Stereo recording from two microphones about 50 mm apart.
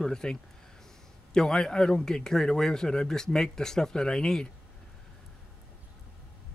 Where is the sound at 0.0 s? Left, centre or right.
Centre.